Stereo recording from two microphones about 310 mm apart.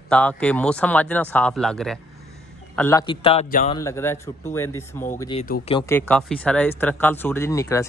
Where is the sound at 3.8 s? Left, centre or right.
Centre.